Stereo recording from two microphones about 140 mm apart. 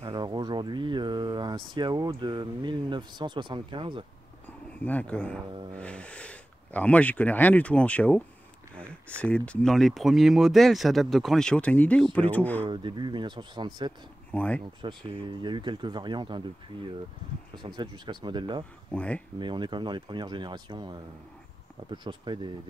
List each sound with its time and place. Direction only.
0.0 s a sound: 30° right (ahead or behind)
4.8 s speech: 10° left (ahead or behind)
5.5 s speech: 35° right (ahead or behind)
5.8 s speech: 10° left (ahead or behind)
12.6 s speech: 35° right (ahead or behind)
14.3 s speech: 10° left (ahead or behind)
14.8 s speech: 35° right (ahead or behind)
18.9 s speech: 10° left (ahead or behind)
19.3 s speech: 35° right (ahead or behind)